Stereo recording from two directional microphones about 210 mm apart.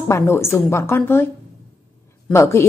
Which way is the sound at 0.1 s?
10° left (ahead or behind).